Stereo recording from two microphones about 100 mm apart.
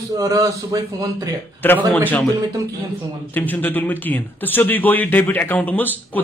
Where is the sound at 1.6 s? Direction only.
20° left (ahead or behind).